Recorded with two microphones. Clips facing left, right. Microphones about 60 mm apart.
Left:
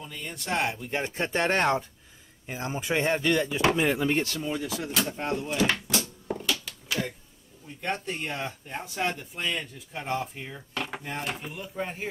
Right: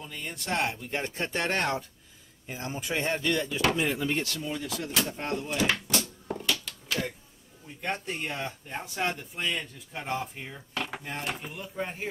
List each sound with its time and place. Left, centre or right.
0.0 s speech: centre
1.1 s speech: left
3.8 s speech: left
4.6 s speech: centre
6.3 s a sound: centre
7.8 s speech: centre